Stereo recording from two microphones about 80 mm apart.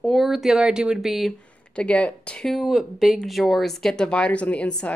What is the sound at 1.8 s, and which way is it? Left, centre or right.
Speech, centre.